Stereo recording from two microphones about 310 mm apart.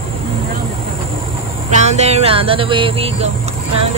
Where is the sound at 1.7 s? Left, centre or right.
Right.